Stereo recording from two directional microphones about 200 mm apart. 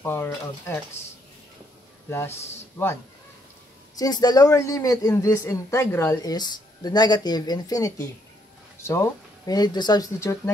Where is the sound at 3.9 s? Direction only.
20° left (ahead or behind).